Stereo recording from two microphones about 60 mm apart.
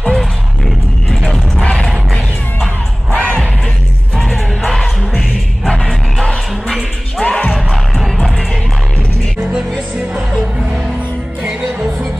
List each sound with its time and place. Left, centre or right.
0.0 s music: centre
1.6 s music: centre
3.1 s crowd: centre
4.1 s music: centre
7.5 s music: centre
9.5 s music: centre
11.4 s music: centre